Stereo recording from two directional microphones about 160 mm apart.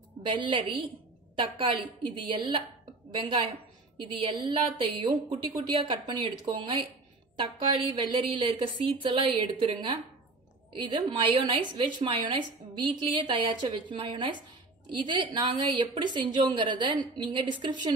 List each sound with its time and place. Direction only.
0.2 s a woman's voice: 30° right (ahead or behind)